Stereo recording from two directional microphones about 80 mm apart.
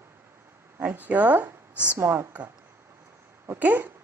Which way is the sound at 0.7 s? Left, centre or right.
Right.